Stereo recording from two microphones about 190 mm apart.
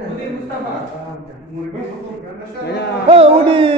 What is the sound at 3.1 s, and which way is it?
Speech, 30° right (ahead or behind).